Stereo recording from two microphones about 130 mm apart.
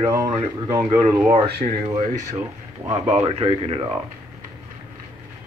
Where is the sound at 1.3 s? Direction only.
40° right (ahead or behind).